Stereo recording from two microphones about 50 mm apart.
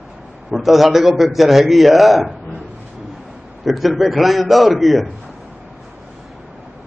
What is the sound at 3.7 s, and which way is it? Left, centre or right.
A man's voice, centre.